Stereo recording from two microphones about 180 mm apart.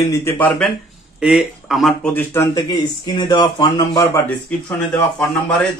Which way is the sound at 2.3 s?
20° left (ahead or behind).